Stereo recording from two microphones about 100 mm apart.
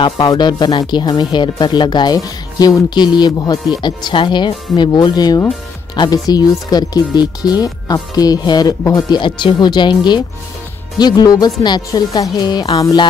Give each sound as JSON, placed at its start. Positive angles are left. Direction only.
{"t": 0.3, "sound": "speech", "side_deg": 45}
{"t": 9.2, "sound": "speech", "side_deg": 55}